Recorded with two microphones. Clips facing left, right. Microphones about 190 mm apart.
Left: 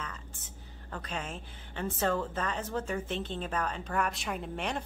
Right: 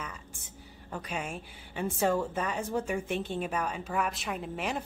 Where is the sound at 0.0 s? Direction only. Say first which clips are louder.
Right 1 dB; 10° right (ahead or behind).